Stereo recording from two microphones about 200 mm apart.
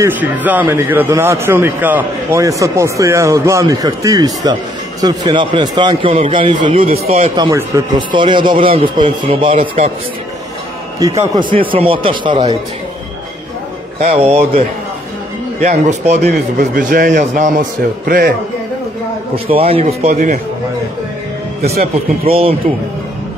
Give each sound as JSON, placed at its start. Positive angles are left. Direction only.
{"t": 0.0, "sound": "a man's voice", "side_deg": -10}
{"t": 11.1, "sound": "a man's voice", "side_deg": -25}
{"t": 14.0, "sound": "a man's voice", "side_deg": -35}
{"t": 15.6, "sound": "a man's voice", "side_deg": -35}
{"t": 16.2, "sound": "a man's voice", "side_deg": -50}
{"t": 19.3, "sound": "a man's voice", "side_deg": -30}
{"t": 21.7, "sound": "a man's voice", "side_deg": -30}